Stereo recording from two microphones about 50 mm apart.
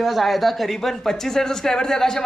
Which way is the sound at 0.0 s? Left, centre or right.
Centre.